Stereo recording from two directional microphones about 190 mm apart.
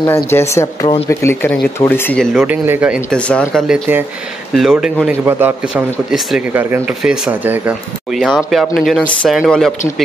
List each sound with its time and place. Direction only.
0.0 s speech: 15° left (ahead or behind)
2.4 s speech: 10° right (ahead or behind)
3.1 s speech: 5° left (ahead or behind)